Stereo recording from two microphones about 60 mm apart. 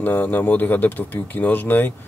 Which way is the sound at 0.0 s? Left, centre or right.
Left.